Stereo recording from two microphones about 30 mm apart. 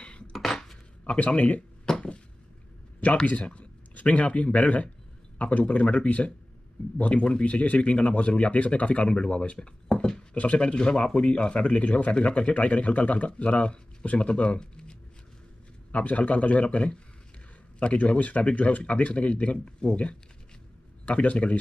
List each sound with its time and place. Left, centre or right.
0.3 s dishes: centre
1.0 s speech: left
3.3 s speech: left
7.2 s speech: left
14.6 s speech: left
15.9 s speech: left
21.0 s speech: left